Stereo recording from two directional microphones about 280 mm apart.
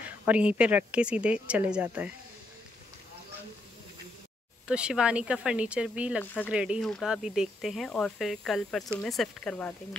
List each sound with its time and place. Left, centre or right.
0.2 s speech: centre
4.6 s speech: centre